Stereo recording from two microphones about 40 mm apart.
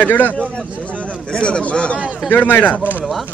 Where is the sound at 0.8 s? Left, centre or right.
Left.